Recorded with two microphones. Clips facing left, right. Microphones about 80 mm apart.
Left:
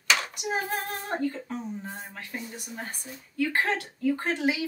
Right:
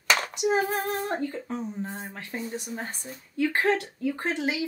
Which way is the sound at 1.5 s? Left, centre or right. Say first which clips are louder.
Right 2 dB; right.